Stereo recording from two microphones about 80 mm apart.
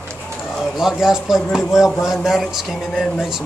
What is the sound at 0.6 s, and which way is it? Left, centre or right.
Speech, centre.